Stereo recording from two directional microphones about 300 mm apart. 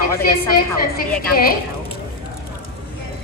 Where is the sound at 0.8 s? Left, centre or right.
Left.